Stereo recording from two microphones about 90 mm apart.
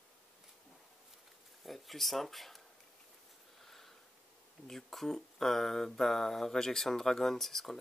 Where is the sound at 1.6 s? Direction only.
Centre (ahead or behind).